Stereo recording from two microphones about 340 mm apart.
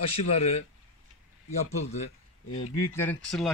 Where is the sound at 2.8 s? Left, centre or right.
Centre.